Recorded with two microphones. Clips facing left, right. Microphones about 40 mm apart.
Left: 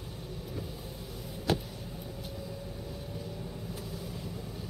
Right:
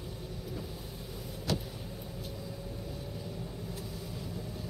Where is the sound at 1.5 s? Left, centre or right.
Left.